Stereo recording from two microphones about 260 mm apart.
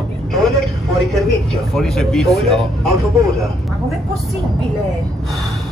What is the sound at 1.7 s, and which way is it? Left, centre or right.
Speech, centre.